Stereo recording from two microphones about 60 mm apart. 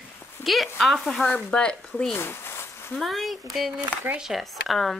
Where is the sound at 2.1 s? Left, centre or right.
Left.